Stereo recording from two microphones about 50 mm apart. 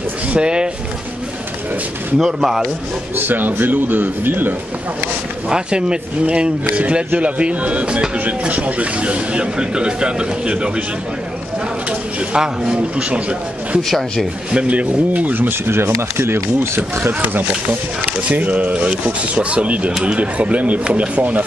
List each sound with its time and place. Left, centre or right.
0.3 s speech: centre
2.1 s a man's voice: centre
3.2 s a man's voice: right
5.5 s speech: centre
12.3 s a man's voice: centre
13.8 s speech: centre
14.5 s speech: right
15.3 s a man's voice: right
16.5 s speech: right
17.2 s a man's voice: right